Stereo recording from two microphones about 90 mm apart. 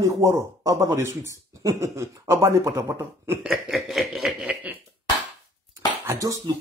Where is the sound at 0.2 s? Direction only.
35° right (ahead or behind).